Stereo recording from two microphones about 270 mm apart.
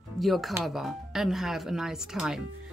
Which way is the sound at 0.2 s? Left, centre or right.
Centre.